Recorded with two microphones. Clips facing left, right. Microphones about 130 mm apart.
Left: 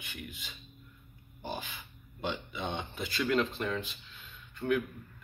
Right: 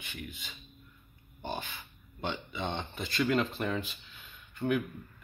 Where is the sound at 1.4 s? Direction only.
5° left (ahead or behind).